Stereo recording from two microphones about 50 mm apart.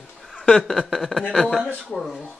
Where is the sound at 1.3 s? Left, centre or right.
Centre.